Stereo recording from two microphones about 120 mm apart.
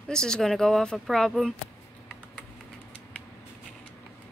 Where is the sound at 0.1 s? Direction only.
5° left (ahead or behind).